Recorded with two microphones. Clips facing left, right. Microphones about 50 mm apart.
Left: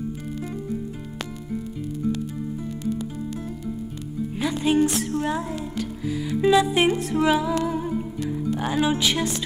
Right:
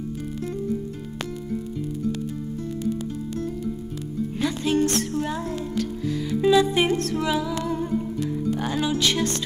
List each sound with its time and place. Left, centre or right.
2.1 s music: centre
4.4 s music: centre
7.6 s music: centre